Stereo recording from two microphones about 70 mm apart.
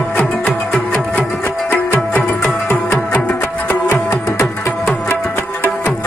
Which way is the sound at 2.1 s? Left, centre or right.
Left.